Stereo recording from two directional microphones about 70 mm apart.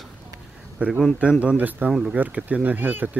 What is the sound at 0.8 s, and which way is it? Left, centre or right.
Speech, centre.